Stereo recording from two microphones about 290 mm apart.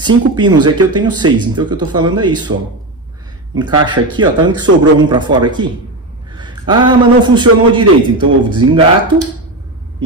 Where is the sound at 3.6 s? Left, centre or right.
Centre.